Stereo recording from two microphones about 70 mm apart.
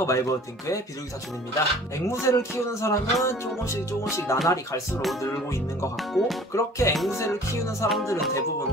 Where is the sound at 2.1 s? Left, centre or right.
Left.